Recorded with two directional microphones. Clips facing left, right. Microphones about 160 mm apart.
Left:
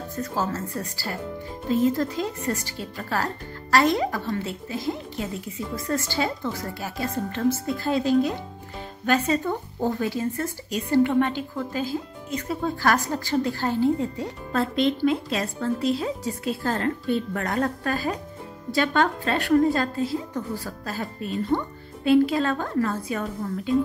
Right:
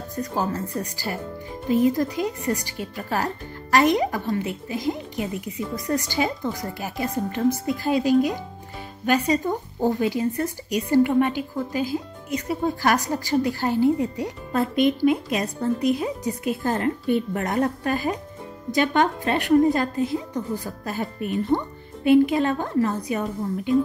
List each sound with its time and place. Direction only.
0.1 s a woman's voice: 15° right (ahead or behind)